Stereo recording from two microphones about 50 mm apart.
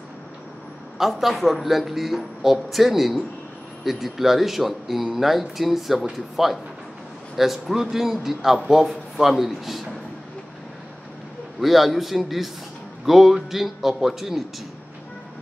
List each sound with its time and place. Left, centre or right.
0.9 s speech: centre
11.6 s speech: centre